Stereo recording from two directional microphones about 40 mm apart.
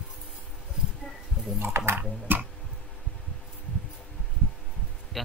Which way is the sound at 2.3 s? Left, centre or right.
Right.